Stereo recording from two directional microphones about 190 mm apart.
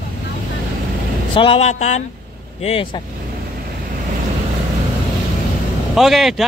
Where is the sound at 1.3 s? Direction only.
30° left (ahead or behind).